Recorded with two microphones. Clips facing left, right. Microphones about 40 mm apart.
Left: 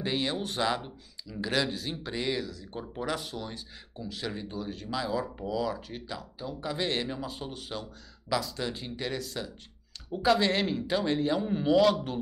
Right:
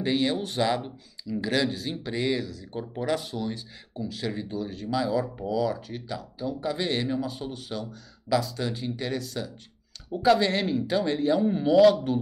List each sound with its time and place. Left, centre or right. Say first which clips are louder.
0.4 s speech: right 3 dB; centre
7.7 s speech: right 4 dB; centre
8.4 s speech: right 3 dB; centre